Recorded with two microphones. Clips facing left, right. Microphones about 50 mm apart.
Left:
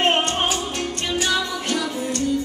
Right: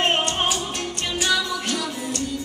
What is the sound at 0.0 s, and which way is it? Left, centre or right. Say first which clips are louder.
Music: left 2 dB; left.